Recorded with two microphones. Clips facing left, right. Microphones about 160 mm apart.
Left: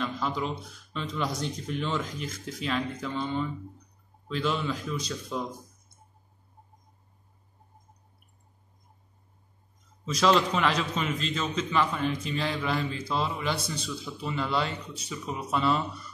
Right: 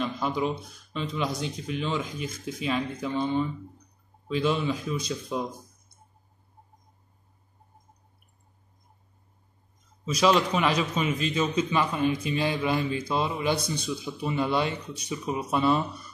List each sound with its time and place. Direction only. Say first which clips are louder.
0.0 s a sound: right 3 dB; 15° right (ahead or behind)
1.1 s a man's voice: even; 5° right (ahead or behind)
10.0 s a man's voice: right 1 dB; 10° right (ahead or behind)